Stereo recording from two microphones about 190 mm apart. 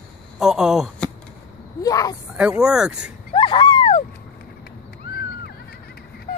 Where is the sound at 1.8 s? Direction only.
20° left (ahead or behind).